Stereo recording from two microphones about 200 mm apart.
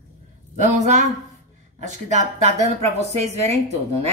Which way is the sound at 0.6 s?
35° right (ahead or behind).